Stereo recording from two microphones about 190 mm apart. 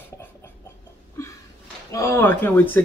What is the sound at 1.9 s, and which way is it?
Speech, 15° left (ahead or behind).